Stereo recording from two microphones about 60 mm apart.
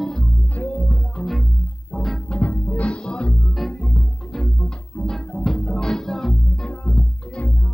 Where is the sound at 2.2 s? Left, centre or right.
Centre.